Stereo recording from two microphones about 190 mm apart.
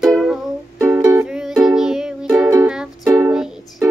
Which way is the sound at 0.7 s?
10° right (ahead or behind).